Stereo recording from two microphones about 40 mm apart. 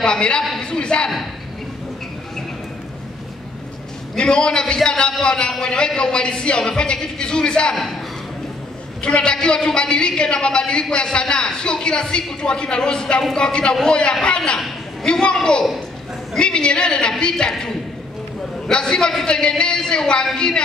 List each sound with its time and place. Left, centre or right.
0.0 s a man's voice: left
4.2 s a man's voice: left
9.0 s a man's voice: left
16.3 s a man's voice: left